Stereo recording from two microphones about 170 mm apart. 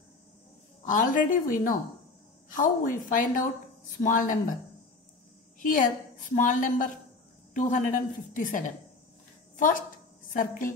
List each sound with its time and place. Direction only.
0.8 s a woman's voice: 50° left (ahead or behind)
5.6 s a woman's voice: 50° left (ahead or behind)